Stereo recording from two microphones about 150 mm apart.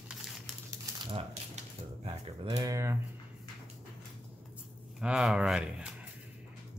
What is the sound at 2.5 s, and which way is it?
Speech, 20° right (ahead or behind).